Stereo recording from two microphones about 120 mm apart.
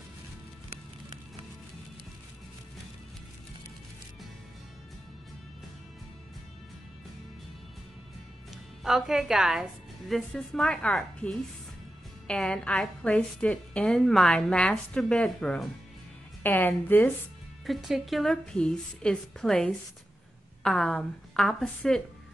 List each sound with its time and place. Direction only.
8.8 s a woman's voice: 5° right (ahead or behind); by 17.1 s 15° left (ahead or behind)
17.6 s a woman's voice: centre (ahead or behind)